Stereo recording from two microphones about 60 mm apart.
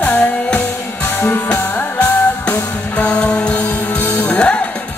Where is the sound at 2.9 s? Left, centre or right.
Centre.